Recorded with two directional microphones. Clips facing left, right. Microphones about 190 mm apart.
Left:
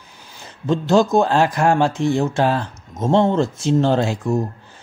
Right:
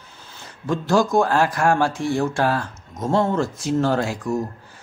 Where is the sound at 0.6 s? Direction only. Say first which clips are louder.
Left 3 dB; 25° left (ahead or behind).